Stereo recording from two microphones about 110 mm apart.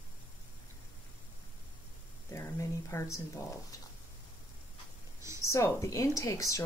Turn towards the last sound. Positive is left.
turn(degrees=30)  # may be behind; listen again after turning